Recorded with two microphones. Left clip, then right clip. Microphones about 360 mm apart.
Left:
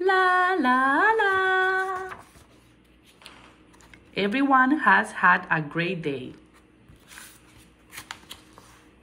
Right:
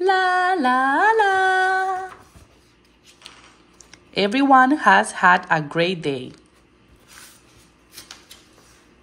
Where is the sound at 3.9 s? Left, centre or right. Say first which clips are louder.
Right 6 dB; centre.